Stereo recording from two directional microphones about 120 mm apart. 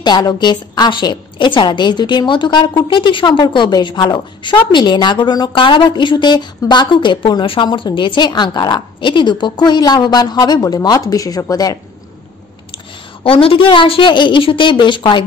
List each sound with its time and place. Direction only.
0.0 s a woman's voice: 35° left (ahead or behind)
13.2 s a woman's voice: 50° left (ahead or behind)